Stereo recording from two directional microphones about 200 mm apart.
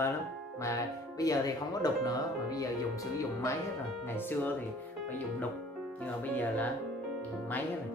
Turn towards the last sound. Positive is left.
turn(degrees=10)  # may be behind; listen again after turning